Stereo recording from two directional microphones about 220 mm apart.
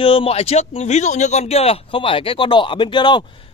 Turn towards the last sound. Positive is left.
turn(degrees=20)  # may be behind; listen again after turning